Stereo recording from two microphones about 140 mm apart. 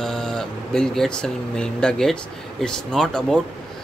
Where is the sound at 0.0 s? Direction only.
5° left (ahead or behind).